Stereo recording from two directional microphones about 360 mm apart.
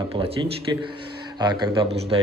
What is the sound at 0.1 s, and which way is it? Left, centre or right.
Speech, centre.